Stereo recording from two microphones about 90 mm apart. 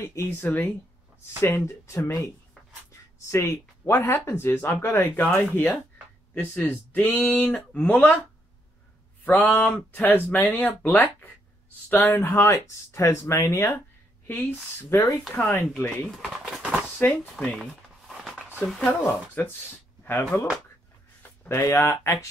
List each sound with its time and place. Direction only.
0.0 s speech: 30° left (ahead or behind)
9.2 s speech: 20° left (ahead or behind)
16.1 s bird: centre (ahead or behind)
17.0 s speech: 20° left (ahead or behind)
17.6 s a sound: centre (ahead or behind)
19.0 s speech: 20° left (ahead or behind)
21.2 s a sound: 30° left (ahead or behind)
22.0 s speech: 30° left (ahead or behind)